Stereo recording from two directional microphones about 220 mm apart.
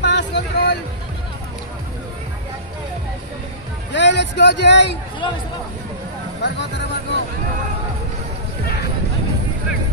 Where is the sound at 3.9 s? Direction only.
50° left (ahead or behind).